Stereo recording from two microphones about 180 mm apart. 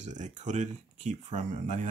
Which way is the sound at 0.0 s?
40° right (ahead or behind).